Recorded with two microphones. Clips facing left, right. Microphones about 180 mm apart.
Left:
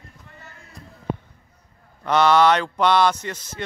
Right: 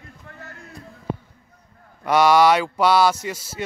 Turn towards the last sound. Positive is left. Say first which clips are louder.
# right 2 dB
turn(degrees=-10)  # may be behind; listen again after turning